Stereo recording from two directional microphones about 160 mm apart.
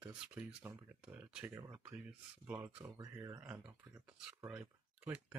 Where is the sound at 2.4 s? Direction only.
10° right (ahead or behind).